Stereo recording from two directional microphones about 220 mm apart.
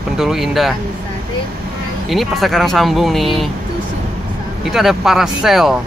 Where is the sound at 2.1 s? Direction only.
Centre (ahead or behind).